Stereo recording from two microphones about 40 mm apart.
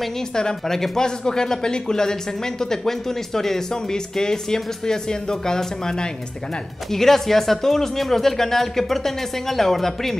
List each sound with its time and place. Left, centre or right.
0.4 s speech: centre